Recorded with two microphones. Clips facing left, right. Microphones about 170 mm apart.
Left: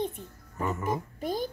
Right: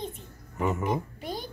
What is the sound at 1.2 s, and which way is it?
Speech, 45° left (ahead or behind).